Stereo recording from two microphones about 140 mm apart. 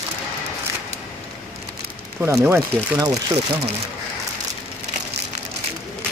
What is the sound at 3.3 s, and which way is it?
Speech, 45° right (ahead or behind).